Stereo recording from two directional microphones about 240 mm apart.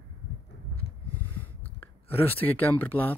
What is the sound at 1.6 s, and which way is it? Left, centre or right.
Speech, centre.